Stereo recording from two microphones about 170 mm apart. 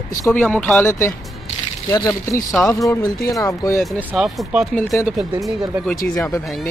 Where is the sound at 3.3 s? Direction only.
20° left (ahead or behind).